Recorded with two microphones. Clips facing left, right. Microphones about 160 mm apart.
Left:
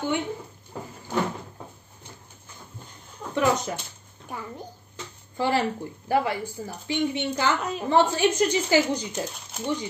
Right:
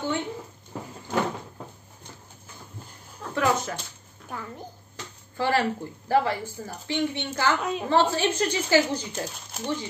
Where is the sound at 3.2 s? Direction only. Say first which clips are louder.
Left 1 dB; 20° left (ahead or behind).